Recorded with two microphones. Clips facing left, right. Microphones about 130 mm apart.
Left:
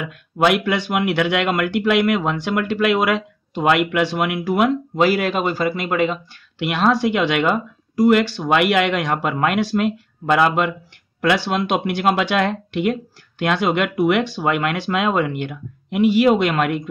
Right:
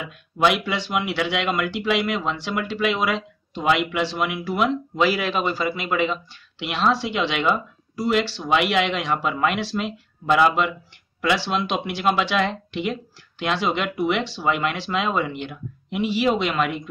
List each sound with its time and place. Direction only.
0.0 s speech: 55° left (ahead or behind)